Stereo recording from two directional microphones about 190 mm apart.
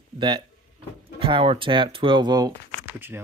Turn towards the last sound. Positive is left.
turn(degrees=-10)  # may be behind; listen again after turning